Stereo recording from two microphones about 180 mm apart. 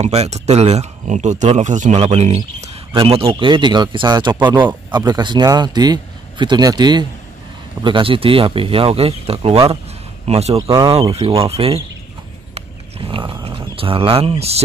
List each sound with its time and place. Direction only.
0.0 s speech: 35° right (ahead or behind)
13.1 s speech: 30° right (ahead or behind)